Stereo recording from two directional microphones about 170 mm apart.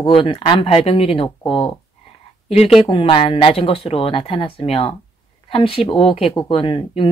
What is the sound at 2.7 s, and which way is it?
Speech, 30° left (ahead or behind).